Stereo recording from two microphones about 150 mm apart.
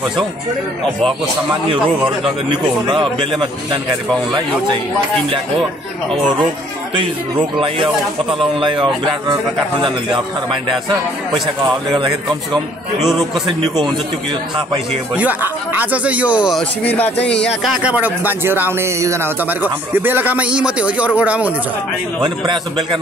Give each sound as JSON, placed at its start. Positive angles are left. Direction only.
{"t": 2.9, "sound": "a man's voice", "side_deg": -35}
{"t": 8.5, "sound": "a man's voice", "side_deg": -35}
{"t": 13.0, "sound": "a man's voice", "side_deg": 0}
{"t": 15.1, "sound": "speech", "side_deg": -10}
{"t": 16.8, "sound": "speech", "side_deg": 10}
{"t": 17.6, "sound": "speech", "side_deg": -10}
{"t": 22.2, "sound": "a man's voice", "side_deg": -30}